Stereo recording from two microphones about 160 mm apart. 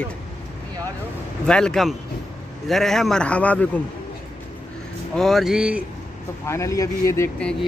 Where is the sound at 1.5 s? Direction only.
5° left (ahead or behind).